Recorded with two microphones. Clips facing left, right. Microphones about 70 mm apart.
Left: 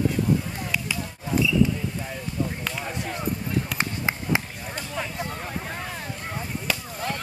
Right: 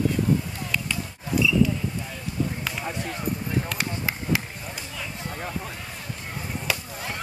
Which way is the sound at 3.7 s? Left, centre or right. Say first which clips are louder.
Left 2 dB; left.